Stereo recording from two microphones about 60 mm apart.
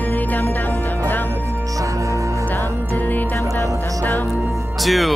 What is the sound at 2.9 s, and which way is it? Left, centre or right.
Music, left.